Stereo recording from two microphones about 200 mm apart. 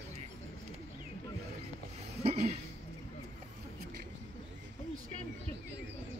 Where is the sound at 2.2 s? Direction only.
30° right (ahead or behind).